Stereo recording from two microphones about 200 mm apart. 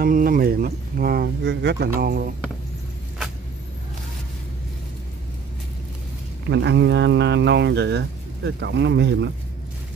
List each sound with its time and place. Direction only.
0.0 s speech: 45° right (ahead or behind)
6.5 s speech: 60° right (ahead or behind)